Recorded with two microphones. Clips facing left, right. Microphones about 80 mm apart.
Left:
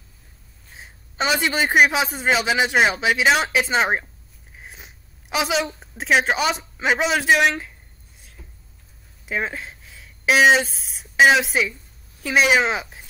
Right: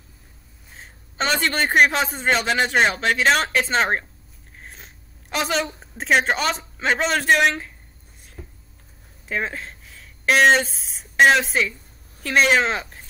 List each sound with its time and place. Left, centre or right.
0.7 s a man's voice: centre
8.4 s a sound: right
9.3 s speech: centre